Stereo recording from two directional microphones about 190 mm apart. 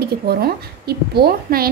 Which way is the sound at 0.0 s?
55° right (ahead or behind).